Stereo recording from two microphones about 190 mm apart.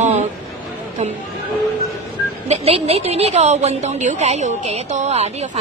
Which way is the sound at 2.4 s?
35° right (ahead or behind).